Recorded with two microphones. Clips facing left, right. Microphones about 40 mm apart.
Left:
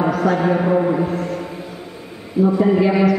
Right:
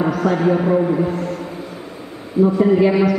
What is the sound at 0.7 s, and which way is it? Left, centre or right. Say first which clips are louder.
Music: even; centre.